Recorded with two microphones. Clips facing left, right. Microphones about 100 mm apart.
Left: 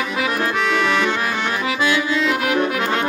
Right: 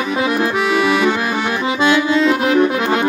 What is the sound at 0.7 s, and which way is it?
Accordion, 10° right (ahead or behind).